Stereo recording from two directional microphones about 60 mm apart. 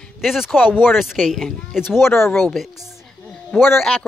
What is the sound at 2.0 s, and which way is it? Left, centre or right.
Speech, left.